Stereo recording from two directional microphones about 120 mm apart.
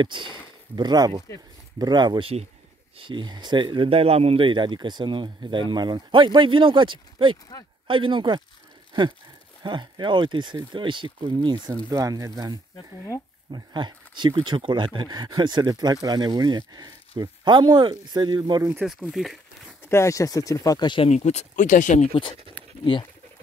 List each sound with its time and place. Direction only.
0.0 s speech: 40° right (ahead or behind)
9.6 s speech: 40° right (ahead or behind)
19.0 s a sound: centre (ahead or behind)
19.8 s speech: 20° left (ahead or behind); by 21.1 s 40° left (ahead or behind)
21.1 s speech: 70° left (ahead or behind); by 22.1 s 85° left